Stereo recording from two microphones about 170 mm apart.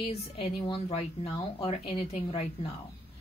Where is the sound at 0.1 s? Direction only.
30° left (ahead or behind).